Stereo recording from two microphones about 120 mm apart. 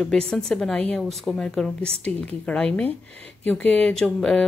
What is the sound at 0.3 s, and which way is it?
Speech, 5° left (ahead or behind).